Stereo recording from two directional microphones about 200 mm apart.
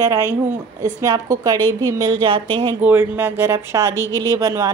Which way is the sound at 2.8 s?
10° right (ahead or behind).